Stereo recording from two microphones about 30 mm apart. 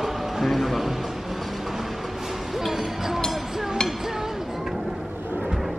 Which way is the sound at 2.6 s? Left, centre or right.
Centre.